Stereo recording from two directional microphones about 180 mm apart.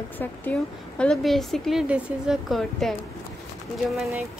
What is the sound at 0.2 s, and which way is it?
A woman's voice, 10° left (ahead or behind).